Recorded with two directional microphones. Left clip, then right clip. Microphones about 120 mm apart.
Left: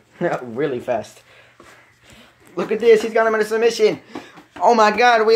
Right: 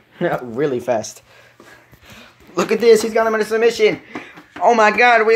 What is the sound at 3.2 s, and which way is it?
Speech, 5° right (ahead or behind).